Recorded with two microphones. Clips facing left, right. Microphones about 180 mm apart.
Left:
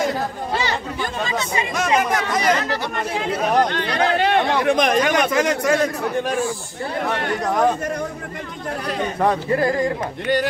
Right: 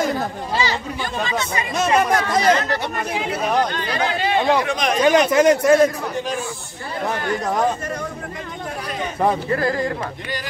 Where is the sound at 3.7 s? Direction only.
65° left (ahead or behind).